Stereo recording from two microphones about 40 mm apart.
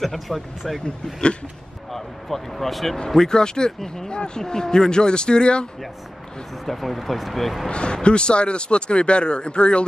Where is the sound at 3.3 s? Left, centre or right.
Centre.